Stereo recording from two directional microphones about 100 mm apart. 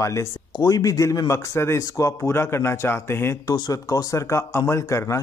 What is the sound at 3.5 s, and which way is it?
A man's voice, 35° left (ahead or behind).